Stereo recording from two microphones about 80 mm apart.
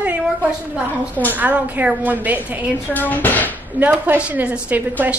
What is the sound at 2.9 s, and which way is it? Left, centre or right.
Speech, left.